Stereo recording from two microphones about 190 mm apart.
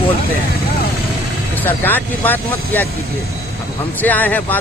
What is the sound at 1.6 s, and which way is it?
Speech, 10° left (ahead or behind).